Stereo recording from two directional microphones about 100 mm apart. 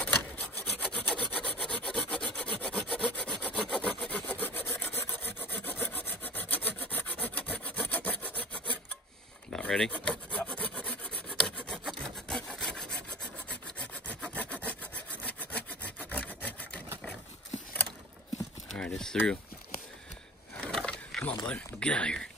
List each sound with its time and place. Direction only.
0.7 s rub: 10° left (ahead or behind)
2.6 s wood: 10° left (ahead or behind)
9.5 s rub: 10° left (ahead or behind)
13.5 s wood: 10° left (ahead or behind)
18.7 s a sound: 10° left (ahead or behind)
20.6 s a sound: 10° left (ahead or behind)
21.5 s speech: 10° left (ahead or behind)